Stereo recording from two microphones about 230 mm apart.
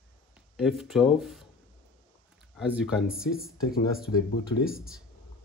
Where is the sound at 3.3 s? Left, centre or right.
Left.